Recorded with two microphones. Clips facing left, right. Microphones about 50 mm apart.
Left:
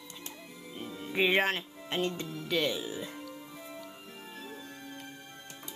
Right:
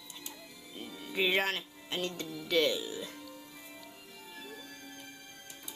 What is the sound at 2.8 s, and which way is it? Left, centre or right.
Speech, left.